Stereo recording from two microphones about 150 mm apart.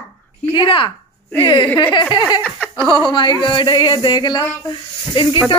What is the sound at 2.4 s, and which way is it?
Giggle, 5° left (ahead or behind).